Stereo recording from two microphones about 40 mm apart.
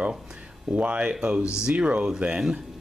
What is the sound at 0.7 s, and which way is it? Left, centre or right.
Speech, right.